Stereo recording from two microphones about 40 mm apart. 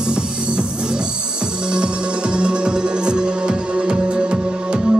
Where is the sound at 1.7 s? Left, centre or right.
Right.